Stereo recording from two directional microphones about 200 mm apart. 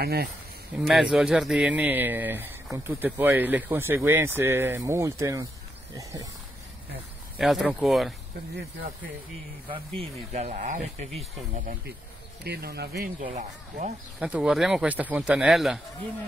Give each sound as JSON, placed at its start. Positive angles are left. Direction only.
{"t": 0.0, "sound": "speech", "side_deg": -50}
{"t": 0.7, "sound": "speech", "side_deg": 0}
{"t": 7.3, "sound": "speech", "side_deg": -5}
{"t": 9.7, "sound": "speech", "side_deg": -30}
{"t": 12.4, "sound": "speech", "side_deg": -55}
{"t": 14.2, "sound": "speech", "side_deg": -5}